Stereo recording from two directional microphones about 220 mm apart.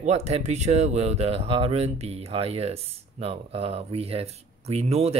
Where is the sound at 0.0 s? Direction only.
30° right (ahead or behind).